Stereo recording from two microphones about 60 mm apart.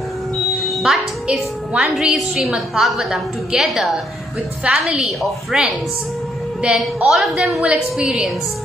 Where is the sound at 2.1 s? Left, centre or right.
Centre.